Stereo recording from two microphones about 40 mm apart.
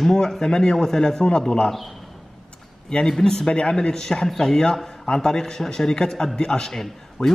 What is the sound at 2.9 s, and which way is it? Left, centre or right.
Speech, left.